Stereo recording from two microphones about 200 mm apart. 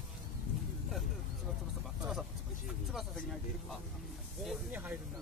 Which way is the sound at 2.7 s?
Centre (ahead or behind).